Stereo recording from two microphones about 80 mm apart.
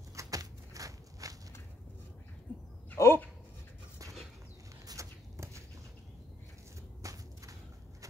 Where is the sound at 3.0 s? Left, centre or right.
Left.